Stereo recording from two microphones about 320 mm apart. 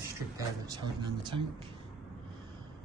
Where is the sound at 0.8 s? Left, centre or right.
Centre.